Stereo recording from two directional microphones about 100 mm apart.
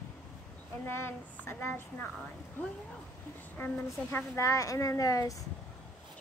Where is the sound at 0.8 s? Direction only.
25° left (ahead or behind).